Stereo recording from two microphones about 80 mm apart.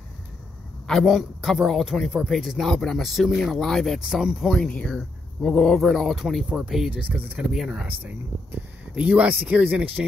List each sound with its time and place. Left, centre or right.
0.8 s a sound: centre
1.1 s speech: centre
4.6 s speech: centre
6.9 s speech: right
7.5 s speech: centre
7.8 s speech: centre